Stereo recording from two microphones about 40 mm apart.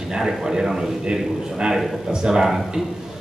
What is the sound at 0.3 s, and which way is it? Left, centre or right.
A man's voice, centre.